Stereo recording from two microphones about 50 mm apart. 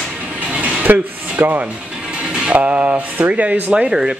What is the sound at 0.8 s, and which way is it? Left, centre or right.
Speech, right.